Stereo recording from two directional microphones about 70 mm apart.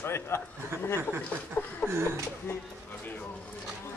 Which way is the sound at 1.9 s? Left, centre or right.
Right.